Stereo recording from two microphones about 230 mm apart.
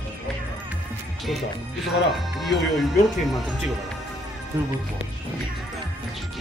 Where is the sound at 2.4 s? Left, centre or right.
Centre.